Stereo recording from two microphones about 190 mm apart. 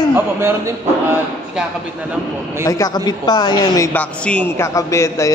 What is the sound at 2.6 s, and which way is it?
A woman's voice, 20° left (ahead or behind).